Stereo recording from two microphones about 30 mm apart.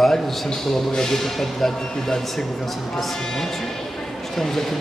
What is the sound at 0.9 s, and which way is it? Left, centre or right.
Speech, centre.